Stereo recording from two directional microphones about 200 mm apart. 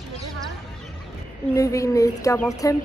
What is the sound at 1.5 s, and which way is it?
Speech, 15° left (ahead or behind).